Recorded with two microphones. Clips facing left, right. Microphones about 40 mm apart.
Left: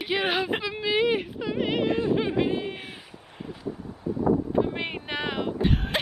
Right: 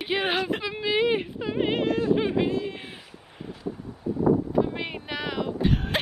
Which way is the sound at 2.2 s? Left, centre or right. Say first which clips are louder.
Right 1 dB; centre.